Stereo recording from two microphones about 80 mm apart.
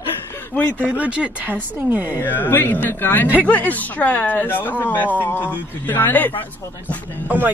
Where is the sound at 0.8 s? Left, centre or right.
Centre.